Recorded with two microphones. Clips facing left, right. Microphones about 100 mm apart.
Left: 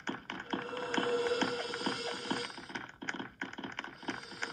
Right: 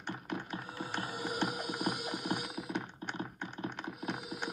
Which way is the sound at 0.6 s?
70° left (ahead or behind).